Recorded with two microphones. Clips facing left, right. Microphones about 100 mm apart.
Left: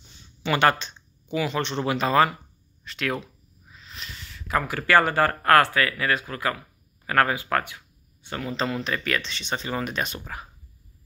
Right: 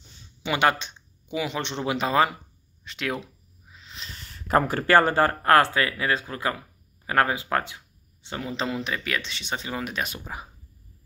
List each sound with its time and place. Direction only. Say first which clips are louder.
0.4 s speech: left 2 dB; 15° right (ahead or behind)
3.7 s a sound: left 1 dB; 25° right (ahead or behind)
4.3 s speech: right 4 dB; 40° right (ahead or behind); by 10.5 s 15° right (ahead or behind)